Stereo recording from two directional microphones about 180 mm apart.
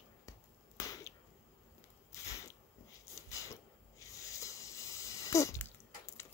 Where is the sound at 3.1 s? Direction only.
15° left (ahead or behind).